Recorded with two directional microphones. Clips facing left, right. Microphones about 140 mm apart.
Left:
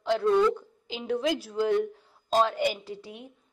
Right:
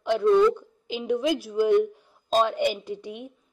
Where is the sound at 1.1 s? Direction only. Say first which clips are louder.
Right 3 dB; 15° right (ahead or behind).